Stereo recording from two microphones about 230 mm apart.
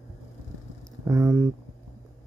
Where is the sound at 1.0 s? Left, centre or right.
Centre.